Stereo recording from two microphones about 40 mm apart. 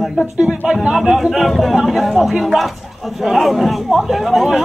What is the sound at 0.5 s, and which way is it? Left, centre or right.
Speech, centre.